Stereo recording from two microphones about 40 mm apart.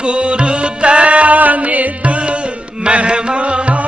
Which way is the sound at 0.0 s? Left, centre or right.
Right.